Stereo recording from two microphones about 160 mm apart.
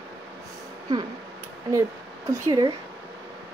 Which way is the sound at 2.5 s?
25° right (ahead or behind).